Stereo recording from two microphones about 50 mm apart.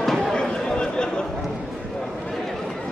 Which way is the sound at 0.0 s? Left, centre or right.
Centre.